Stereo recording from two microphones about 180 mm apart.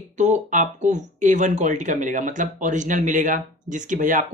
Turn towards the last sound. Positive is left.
turn(degrees=-45)  # may be behind; listen again after turning